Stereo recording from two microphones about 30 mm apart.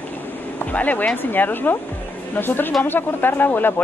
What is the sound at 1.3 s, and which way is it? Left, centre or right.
Speech, left.